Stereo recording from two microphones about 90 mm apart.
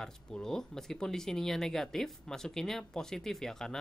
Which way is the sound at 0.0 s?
10° left (ahead or behind).